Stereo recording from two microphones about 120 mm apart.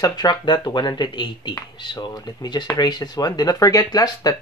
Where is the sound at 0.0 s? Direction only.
35° left (ahead or behind).